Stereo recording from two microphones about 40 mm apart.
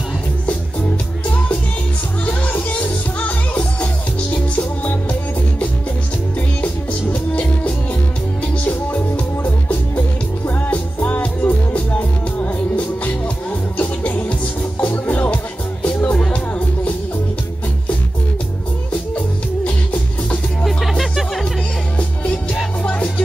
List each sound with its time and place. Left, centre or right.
2.2 s music: left
6.9 s music: left
19.1 s music: left
21.0 s music: centre
21.9 s music: left